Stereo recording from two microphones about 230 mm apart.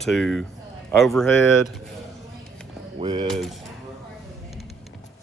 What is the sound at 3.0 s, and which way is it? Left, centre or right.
Speech, centre.